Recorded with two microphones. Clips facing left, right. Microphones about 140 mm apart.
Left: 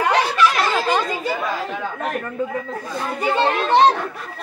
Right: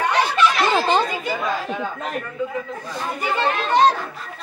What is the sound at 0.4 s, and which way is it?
Snicker, 30° right (ahead or behind).